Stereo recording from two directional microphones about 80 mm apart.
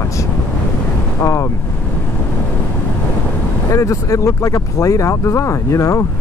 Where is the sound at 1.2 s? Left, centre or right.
Left.